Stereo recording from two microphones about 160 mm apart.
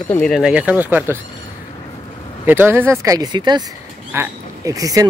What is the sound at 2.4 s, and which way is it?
Speech, 15° right (ahead or behind).